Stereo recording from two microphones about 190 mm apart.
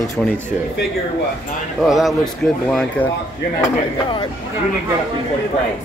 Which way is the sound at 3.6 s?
25° left (ahead or behind).